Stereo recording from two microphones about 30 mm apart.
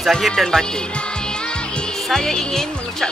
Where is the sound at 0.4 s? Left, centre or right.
Centre.